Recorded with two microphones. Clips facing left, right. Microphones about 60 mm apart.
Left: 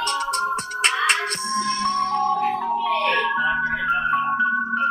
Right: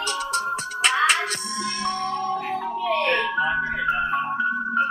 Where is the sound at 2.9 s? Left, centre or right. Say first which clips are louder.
Right 1 dB; right.